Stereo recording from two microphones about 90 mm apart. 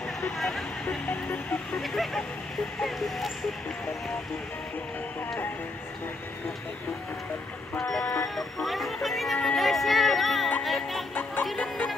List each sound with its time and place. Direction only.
0.2 s speech: 5° left (ahead or behind)
0.8 s speech: 15° left (ahead or behind)
1.8 s speech: centre (ahead or behind)
7.7 s speech: 5° left (ahead or behind)
10.6 s music: centre (ahead or behind)
11.5 s music: 10° left (ahead or behind)